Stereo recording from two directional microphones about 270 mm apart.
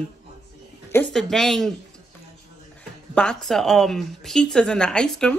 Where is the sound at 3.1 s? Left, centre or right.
Centre.